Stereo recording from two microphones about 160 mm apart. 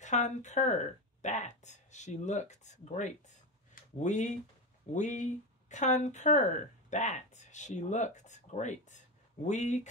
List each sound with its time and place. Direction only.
0.0 s speech: 50° left (ahead or behind)